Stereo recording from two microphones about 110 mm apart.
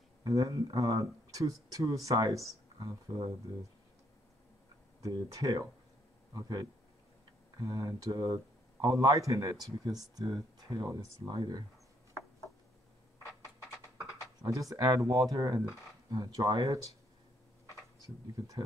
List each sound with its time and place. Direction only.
0.2 s speech: 35° right (ahead or behind)
5.0 s speech: 35° right (ahead or behind)
14.5 s speech: 30° right (ahead or behind)
18.2 s speech: 35° right (ahead or behind)